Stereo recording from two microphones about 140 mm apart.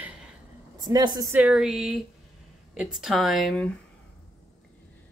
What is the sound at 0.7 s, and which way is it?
Speech, 30° right (ahead or behind).